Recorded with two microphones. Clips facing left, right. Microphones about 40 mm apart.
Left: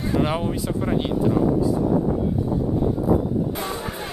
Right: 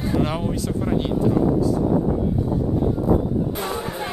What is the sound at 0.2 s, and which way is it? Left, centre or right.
Speech, centre.